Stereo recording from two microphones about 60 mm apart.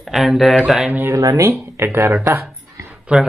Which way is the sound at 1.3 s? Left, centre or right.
Right.